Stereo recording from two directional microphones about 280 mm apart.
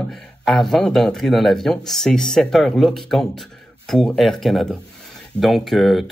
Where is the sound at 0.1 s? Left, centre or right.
Centre.